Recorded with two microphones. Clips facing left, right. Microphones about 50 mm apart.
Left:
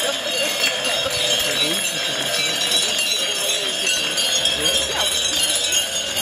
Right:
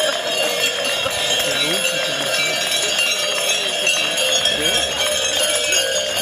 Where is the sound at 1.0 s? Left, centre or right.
Right.